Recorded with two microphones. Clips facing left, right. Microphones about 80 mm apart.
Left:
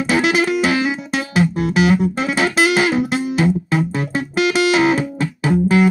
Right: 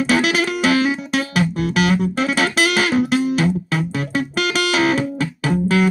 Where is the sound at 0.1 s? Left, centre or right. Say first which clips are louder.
Left 4 dB; left.